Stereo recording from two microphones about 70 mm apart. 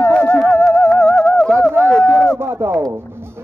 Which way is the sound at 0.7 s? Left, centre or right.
Centre.